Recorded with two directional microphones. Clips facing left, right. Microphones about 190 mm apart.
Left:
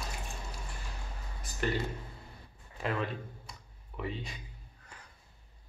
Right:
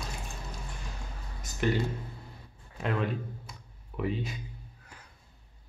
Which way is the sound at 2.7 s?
Centre (ahead or behind).